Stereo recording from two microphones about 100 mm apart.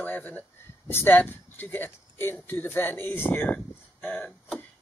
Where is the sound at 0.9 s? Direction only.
20° left (ahead or behind).